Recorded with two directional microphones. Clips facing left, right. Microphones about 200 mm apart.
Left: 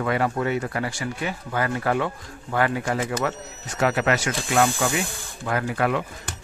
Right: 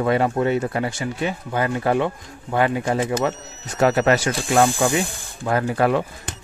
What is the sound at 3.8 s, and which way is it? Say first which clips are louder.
Speech: right 5 dB; 40° right (ahead or behind).